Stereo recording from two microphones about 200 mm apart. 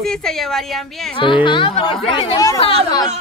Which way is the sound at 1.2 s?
25° left (ahead or behind).